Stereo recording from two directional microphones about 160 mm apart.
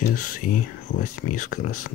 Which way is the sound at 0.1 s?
55° left (ahead or behind).